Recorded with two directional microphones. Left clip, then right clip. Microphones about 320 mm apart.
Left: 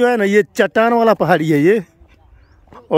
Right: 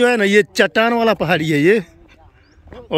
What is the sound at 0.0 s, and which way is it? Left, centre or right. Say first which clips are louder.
A man's voice: even; centre.